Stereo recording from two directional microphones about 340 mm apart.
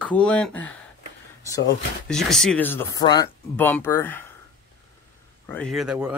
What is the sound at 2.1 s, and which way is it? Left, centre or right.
Speech, centre.